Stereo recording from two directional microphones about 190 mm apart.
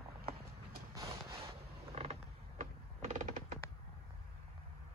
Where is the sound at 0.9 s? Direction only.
20° right (ahead or behind).